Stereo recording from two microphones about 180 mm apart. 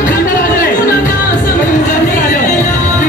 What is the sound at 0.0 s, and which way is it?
Music, 50° left (ahead or behind).